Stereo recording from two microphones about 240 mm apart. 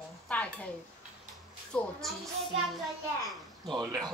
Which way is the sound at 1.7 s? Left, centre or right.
Centre.